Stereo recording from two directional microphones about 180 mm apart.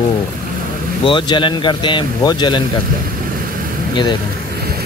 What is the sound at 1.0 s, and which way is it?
Speech, 25° left (ahead or behind).